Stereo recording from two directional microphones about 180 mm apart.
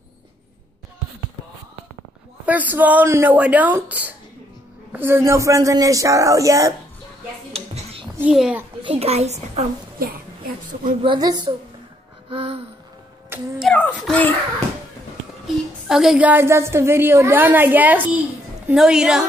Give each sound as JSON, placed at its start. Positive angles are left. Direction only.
{"t": 2.4, "sound": "speech", "side_deg": -10}
{"t": 7.5, "sound": "a sound", "side_deg": -35}
{"t": 8.2, "sound": "a child's voice", "side_deg": -5}
{"t": 8.8, "sound": "a woman's voice", "side_deg": -35}
{"t": 9.9, "sound": "speech", "side_deg": -55}
{"t": 11.0, "sound": "a woman's voice", "side_deg": -25}
{"t": 12.3, "sound": "gasp", "side_deg": -30}
{"t": 13.3, "sound": "a sound", "side_deg": 0}
{"t": 15.4, "sound": "a woman's voice", "side_deg": -5}